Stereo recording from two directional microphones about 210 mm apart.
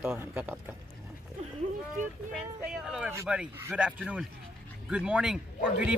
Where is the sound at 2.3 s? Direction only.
5° right (ahead or behind).